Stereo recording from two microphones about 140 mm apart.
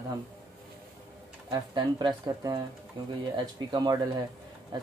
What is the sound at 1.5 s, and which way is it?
Speech, 30° right (ahead or behind).